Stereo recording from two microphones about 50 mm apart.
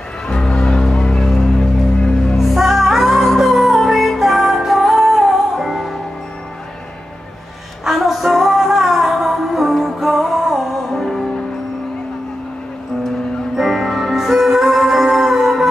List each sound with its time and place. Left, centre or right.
0.3 s music: centre
2.3 s music: centre
7.8 s music: centre
13.6 s music: centre